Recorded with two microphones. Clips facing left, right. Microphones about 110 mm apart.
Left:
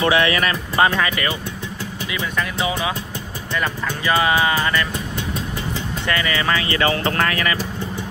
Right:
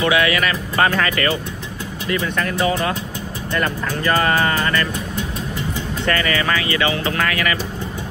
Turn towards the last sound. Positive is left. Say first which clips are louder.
# even
turn(degrees=30)  # may be behind; listen again after turning